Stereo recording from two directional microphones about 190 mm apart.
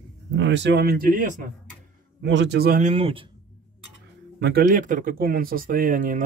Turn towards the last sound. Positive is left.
turn(degrees=-45)  # may be behind; listen again after turning